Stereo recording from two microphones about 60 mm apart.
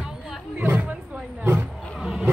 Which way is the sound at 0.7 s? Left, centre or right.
Centre.